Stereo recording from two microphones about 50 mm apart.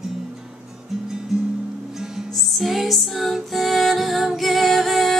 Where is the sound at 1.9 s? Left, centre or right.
Centre.